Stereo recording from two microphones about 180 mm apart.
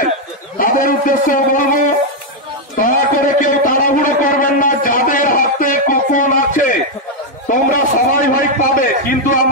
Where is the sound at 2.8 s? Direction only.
50° left (ahead or behind).